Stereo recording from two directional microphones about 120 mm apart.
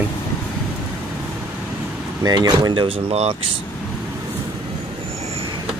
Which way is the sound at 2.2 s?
35° right (ahead or behind).